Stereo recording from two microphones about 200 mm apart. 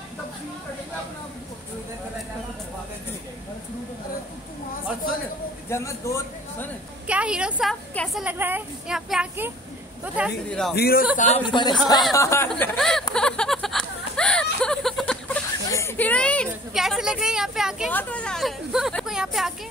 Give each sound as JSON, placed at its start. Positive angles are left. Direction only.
{"t": 5.7, "sound": "a man's voice", "side_deg": 15}
{"t": 7.1, "sound": "speech", "side_deg": -5}
{"t": 10.8, "sound": "speech", "side_deg": 50}
{"t": 11.1, "sound": "speech", "side_deg": 35}
{"t": 12.1, "sound": "a man's voice", "side_deg": 15}
{"t": 12.4, "sound": "speech", "side_deg": 0}
{"t": 13.1, "sound": "a sound", "side_deg": 5}
{"t": 17.9, "sound": "speech", "side_deg": 5}